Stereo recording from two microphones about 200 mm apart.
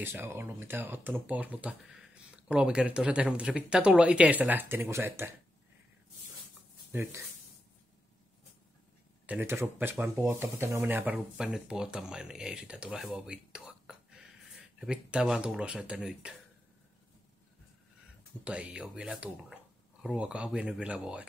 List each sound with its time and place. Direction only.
0.0 s speech: 10° right (ahead or behind)
6.9 s speech: 15° right (ahead or behind)
9.2 s speech: 10° right (ahead or behind)
18.4 s speech: 5° right (ahead or behind)